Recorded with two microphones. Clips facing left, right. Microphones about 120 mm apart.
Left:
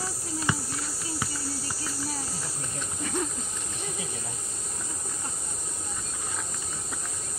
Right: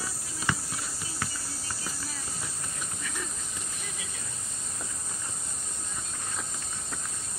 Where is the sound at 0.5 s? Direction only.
15° left (ahead or behind).